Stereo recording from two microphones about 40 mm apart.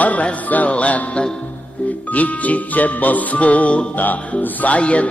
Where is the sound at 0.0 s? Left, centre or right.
Left.